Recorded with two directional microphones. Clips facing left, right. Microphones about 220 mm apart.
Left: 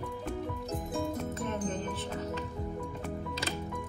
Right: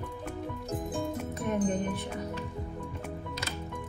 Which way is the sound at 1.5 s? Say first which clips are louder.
Right 5 dB; 15° right (ahead or behind).